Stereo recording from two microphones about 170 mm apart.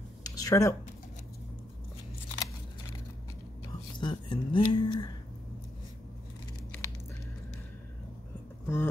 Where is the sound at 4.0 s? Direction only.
30° left (ahead or behind).